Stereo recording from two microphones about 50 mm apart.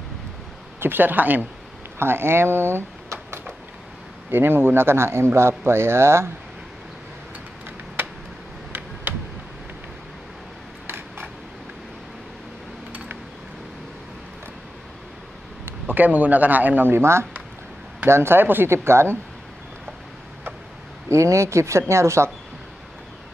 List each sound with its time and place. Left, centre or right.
0.7 s speech: right
2.0 s speech: right
4.3 s a man's voice: right
9.1 s a sound: right
15.9 s speech: right
16.9 s a man's voice: right
21.1 s speech: right